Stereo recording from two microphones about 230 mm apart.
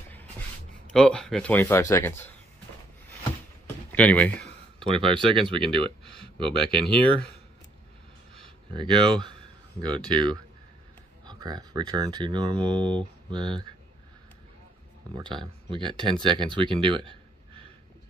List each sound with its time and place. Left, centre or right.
0.9 s speech: centre
3.6 s a sound: centre
4.7 s speech: right
6.0 s a sound: centre
6.4 s speech: right
8.7 s speech: right
15.1 s speech: centre